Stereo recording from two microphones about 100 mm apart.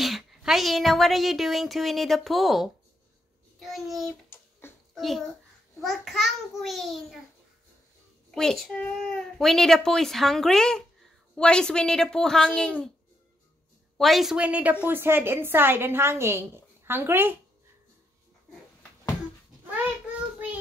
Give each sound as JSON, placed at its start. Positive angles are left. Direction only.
{"t": 0.0, "sound": "a woman's voice", "side_deg": 0}
{"t": 4.3, "sound": "a sound", "side_deg": 25}
{"t": 4.9, "sound": "a child's voice", "side_deg": 0}
{"t": 8.4, "sound": "a woman's voice", "side_deg": 5}
{"t": 13.9, "sound": "a woman's voice", "side_deg": 0}
{"t": 14.3, "sound": "a woman's voice", "side_deg": -15}
{"t": 19.6, "sound": "child singing", "side_deg": -15}